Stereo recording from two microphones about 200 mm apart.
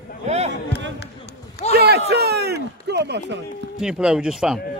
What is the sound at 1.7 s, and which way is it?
A man's voice, 55° right (ahead or behind).